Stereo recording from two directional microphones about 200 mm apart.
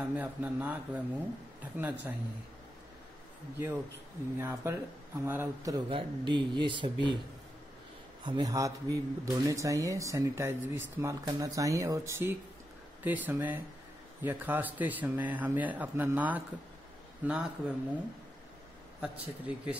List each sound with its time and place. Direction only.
0.0 s speech: 10° right (ahead or behind)
3.5 s speech: 10° right (ahead or behind)
5.9 s speech: 25° right (ahead or behind)
8.2 s speech: 20° right (ahead or behind); by 17.7 s 5° right (ahead or behind)
18.9 s speech: 5° right (ahead or behind)